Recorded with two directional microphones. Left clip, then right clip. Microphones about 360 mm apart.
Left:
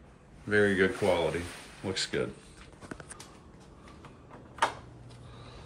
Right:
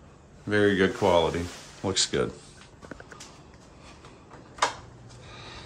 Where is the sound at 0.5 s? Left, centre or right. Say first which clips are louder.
Right 3 dB; centre.